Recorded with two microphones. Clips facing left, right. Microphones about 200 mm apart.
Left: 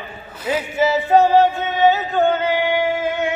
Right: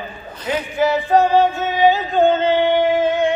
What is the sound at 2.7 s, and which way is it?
Music, 10° left (ahead or behind).